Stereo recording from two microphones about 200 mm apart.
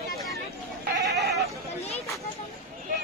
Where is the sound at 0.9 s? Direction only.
60° right (ahead or behind).